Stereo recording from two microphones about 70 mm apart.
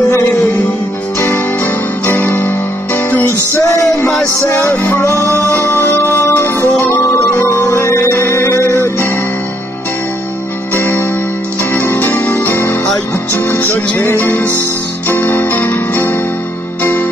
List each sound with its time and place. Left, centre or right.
1.2 s guitar: left
3.5 s music: left
4.7 s music: left
5.5 s music: left
10.7 s music: left
12.4 s music: left
13.3 s music: left